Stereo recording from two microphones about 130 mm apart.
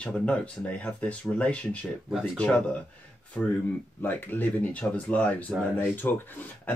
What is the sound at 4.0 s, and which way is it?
Speech, 15° left (ahead or behind).